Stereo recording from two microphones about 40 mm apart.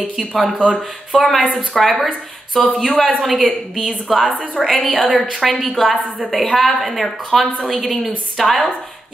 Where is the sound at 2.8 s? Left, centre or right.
Centre.